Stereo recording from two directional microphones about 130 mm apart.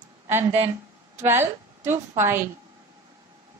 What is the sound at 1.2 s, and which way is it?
A woman's voice, 20° right (ahead or behind).